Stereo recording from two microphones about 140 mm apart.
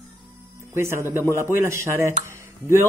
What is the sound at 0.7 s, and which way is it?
Speech, 20° right (ahead or behind).